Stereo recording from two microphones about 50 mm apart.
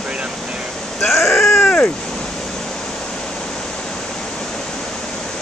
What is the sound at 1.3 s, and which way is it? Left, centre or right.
Speech, left.